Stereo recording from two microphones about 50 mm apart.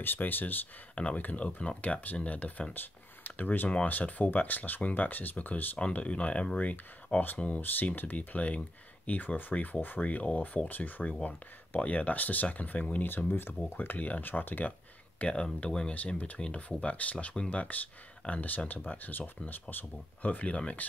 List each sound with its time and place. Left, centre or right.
0.0 s speech: left
1.1 s speech: left
2.7 s speech: left
5.9 s speech: left
7.6 s speech: left
13.3 s speech: left
15.1 s speech: left